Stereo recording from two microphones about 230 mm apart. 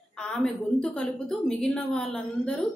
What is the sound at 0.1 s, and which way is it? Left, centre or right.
A woman's voice, centre.